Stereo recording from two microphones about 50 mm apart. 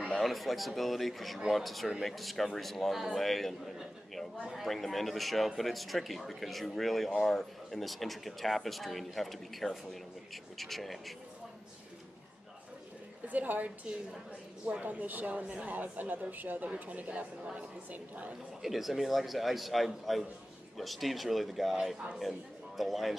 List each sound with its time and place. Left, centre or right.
0.2 s speech: centre
13.3 s speech: right
15.7 s speech: right
18.6 s speech: centre